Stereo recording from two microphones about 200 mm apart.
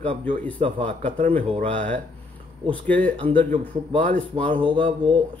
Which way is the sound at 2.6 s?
5° left (ahead or behind).